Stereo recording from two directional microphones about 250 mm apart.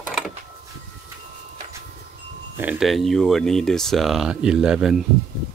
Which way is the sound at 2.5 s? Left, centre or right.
Centre.